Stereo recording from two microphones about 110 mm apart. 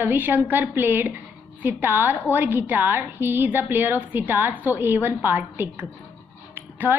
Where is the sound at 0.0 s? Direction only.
15° right (ahead or behind).